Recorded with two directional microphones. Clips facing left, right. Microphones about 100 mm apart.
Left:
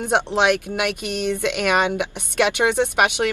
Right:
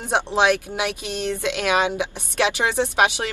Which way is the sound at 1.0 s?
10° left (ahead or behind).